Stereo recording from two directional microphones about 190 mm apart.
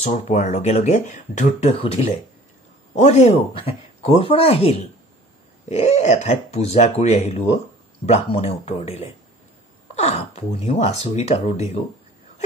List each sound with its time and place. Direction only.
0.0 s speech: 35° left (ahead or behind)